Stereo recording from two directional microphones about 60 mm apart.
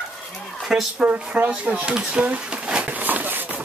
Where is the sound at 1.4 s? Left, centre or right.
Right.